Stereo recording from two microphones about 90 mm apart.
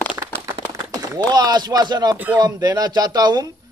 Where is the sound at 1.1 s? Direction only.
50° right (ahead or behind).